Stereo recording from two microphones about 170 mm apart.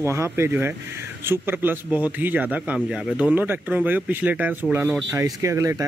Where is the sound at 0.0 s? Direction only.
15° right (ahead or behind).